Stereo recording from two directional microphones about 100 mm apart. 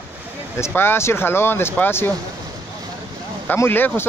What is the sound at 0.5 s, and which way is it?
Speech, 25° left (ahead or behind).